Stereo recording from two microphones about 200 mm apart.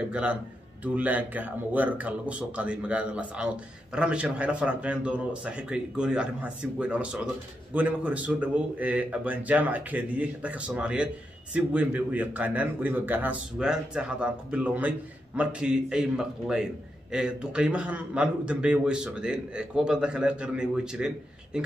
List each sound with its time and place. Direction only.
0.1 s a man's voice: 5° right (ahead or behind)